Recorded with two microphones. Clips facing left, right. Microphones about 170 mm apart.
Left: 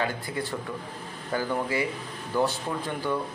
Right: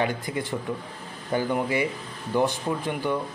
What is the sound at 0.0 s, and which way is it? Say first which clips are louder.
Speech: right 3 dB; 20° right (ahead or behind).